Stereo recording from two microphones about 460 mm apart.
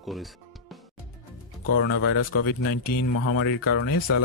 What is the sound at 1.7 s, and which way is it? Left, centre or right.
Speech, left.